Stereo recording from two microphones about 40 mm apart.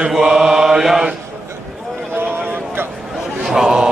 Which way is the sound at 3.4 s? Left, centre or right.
Centre.